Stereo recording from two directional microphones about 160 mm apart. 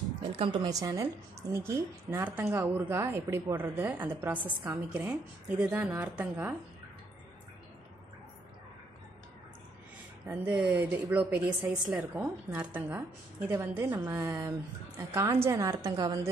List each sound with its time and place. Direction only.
0.2 s a woman's voice: 30° right (ahead or behind); by 4.6 s 10° right (ahead or behind)
4.6 s a woman's voice: 20° right (ahead or behind)
5.6 s a woman's voice: 10° right (ahead or behind)
10.2 s a woman's voice: 10° right (ahead or behind)